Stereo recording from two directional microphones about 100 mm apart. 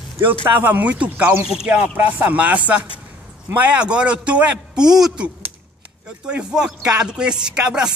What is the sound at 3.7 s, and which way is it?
Speech, 10° right (ahead or behind).